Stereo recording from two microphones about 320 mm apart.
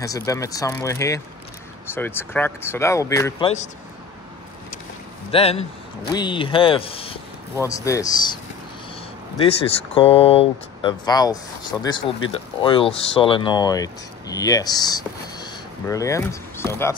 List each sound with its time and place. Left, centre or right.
0.0 s speech: centre
5.3 s speech: centre
9.9 s speech: centre